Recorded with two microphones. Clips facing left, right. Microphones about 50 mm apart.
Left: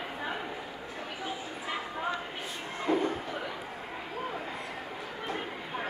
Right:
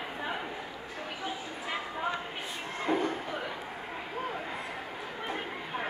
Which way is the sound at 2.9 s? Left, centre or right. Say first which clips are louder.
Left 1 dB; centre.